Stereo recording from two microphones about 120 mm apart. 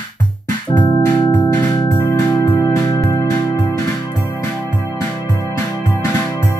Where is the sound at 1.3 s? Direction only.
15° left (ahead or behind).